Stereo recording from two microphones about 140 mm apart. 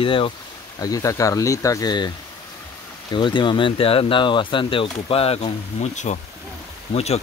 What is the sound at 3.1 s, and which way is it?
Speech, 35° left (ahead or behind).